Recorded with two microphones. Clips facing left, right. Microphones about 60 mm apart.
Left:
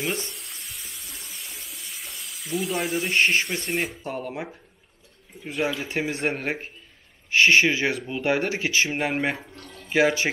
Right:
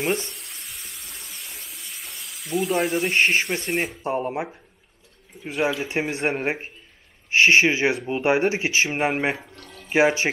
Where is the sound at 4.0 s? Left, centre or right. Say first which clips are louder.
Right 6 dB; right.